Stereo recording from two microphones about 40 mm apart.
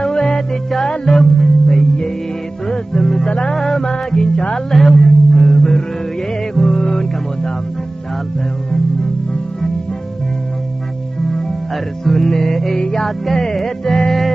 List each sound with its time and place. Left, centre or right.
0.0 s music: centre
3.9 s music: centre
4.6 s music: centre
11.2 s music: centre